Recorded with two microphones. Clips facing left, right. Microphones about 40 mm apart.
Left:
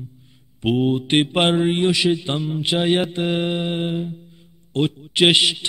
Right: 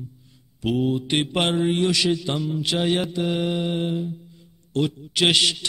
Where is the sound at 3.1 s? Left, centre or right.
Left.